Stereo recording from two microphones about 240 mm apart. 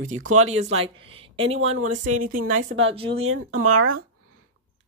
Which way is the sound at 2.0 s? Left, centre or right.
Right.